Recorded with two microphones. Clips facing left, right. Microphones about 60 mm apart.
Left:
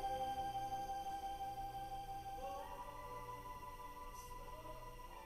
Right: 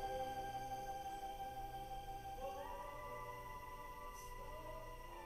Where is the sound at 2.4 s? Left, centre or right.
Right.